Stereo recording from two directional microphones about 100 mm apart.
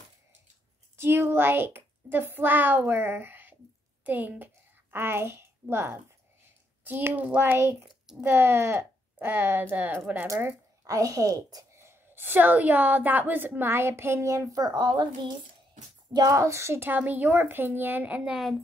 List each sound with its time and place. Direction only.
0.9 s a child's voice: 25° right (ahead or behind)
10.2 s a woman's voice: 30° right (ahead or behind); by 18.5 s 5° right (ahead or behind)